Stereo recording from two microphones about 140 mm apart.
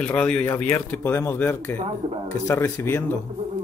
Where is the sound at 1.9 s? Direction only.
40° right (ahead or behind).